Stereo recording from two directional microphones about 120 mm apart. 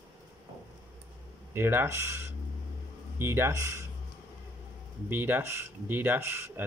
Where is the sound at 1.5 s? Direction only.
20° right (ahead or behind).